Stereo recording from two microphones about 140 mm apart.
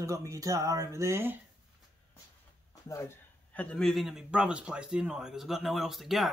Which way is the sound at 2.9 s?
20° left (ahead or behind).